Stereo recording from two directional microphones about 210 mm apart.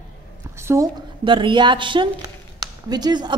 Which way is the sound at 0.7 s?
20° right (ahead or behind).